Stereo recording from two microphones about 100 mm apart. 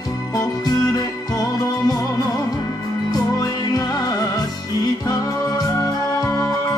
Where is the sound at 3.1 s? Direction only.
40° left (ahead or behind).